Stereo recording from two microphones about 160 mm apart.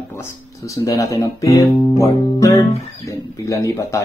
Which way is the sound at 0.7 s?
20° left (ahead or behind).